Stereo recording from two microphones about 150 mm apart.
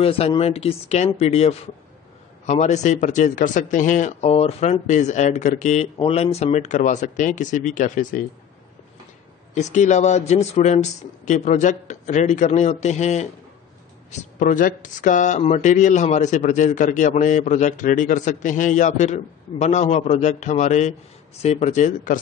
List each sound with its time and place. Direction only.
0.0 s a man's voice: 40° left (ahead or behind)
5.9 s speech: 40° left (ahead or behind); by 8.2 s 60° left (ahead or behind)
9.5 s a man's voice: 50° left (ahead or behind)
14.4 s a man's voice: 60° left (ahead or behind)